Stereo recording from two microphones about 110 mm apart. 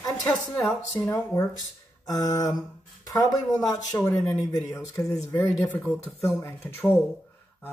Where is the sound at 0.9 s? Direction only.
30° left (ahead or behind).